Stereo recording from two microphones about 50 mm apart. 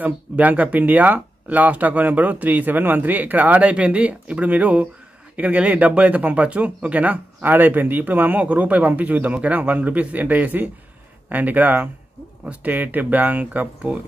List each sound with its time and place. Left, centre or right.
0.0 s speech: right